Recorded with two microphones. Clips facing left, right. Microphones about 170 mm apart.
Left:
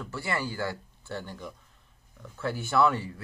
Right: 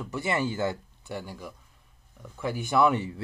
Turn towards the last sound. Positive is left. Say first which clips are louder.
# right 2 dB
turn(degrees=-20)  # may be behind; listen again after turning